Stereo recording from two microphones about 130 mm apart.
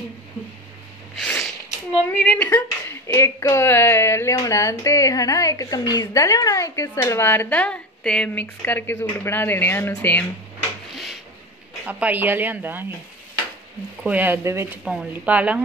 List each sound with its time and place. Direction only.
1.1 s a sound: 5° left (ahead or behind)
2.0 s speech: 10° left (ahead or behind)
11.8 s speech: 10° right (ahead or behind)
14.0 s speech: 15° right (ahead or behind)